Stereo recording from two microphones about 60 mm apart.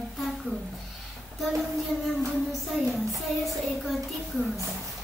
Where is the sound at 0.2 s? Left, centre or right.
Centre.